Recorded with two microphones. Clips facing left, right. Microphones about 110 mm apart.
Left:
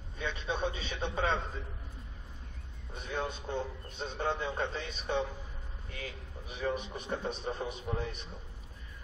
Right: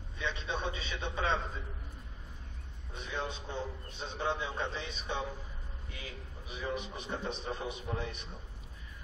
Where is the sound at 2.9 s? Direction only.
50° left (ahead or behind).